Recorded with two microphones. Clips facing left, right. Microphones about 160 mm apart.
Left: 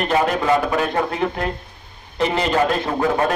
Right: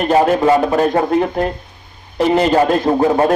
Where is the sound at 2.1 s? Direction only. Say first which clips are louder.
Right 6 dB; 35° right (ahead or behind).